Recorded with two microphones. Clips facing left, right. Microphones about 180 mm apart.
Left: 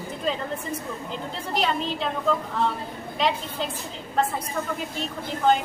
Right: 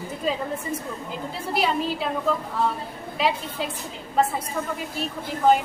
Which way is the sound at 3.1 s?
5° right (ahead or behind).